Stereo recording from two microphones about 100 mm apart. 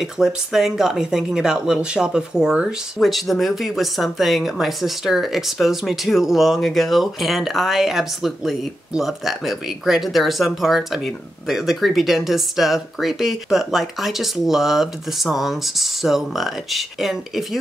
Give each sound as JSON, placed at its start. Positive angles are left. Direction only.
{"t": 0.0, "sound": "speech", "side_deg": -5}